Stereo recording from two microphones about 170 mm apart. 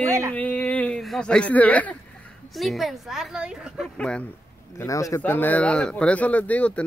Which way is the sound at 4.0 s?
5° left (ahead or behind).